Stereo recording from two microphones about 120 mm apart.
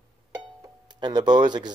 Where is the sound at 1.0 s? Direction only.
35° right (ahead or behind).